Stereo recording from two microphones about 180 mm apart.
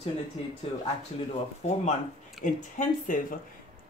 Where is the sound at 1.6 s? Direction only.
40° left (ahead or behind).